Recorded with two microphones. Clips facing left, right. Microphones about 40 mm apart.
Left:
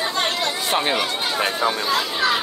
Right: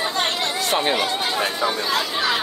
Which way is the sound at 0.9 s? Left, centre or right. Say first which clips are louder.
Right 1 dB; centre.